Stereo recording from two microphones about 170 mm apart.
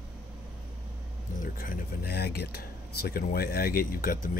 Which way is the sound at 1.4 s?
55° left (ahead or behind).